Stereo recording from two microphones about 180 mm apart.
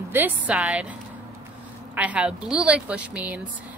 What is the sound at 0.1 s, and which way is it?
Speech, 10° right (ahead or behind).